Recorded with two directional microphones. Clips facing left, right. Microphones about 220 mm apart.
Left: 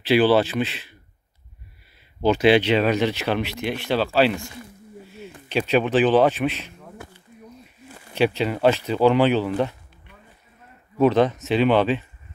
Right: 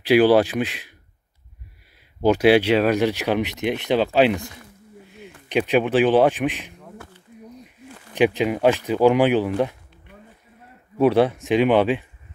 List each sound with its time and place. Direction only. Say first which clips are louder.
0.0 s speech: right 2 dB; 10° right (ahead or behind)
2.2 s speech: right 1 dB; 10° right (ahead or behind)
8.1 s speech: right 2 dB; 15° right (ahead or behind)
11.0 s speech: right 1 dB; 10° right (ahead or behind)